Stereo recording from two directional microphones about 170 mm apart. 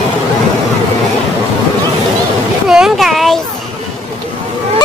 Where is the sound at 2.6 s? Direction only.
Centre (ahead or behind).